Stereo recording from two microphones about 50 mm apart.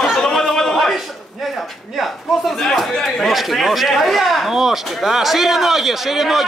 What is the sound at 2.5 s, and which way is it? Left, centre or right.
A man's voice, centre.